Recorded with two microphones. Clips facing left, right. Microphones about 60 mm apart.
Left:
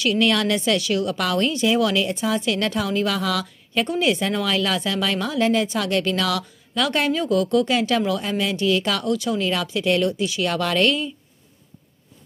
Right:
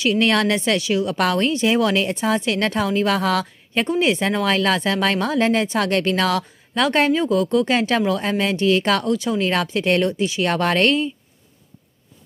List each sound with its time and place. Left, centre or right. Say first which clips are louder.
0.0 s speech: right 2 dB; right
9.5 s speech: right 2 dB; right